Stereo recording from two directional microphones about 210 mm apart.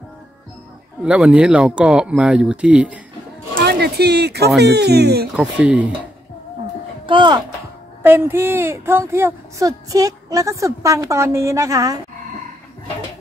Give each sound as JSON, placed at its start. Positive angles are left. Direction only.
{"t": 1.0, "sound": "speech", "side_deg": -5}
{"t": 3.5, "sound": "speech", "side_deg": -50}
{"t": 5.3, "sound": "speech", "side_deg": -5}
{"t": 7.1, "sound": "speech", "side_deg": -20}
{"t": 8.0, "sound": "speech", "side_deg": -10}